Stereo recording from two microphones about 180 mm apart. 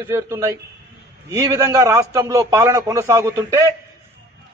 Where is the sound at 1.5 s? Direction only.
15° right (ahead or behind).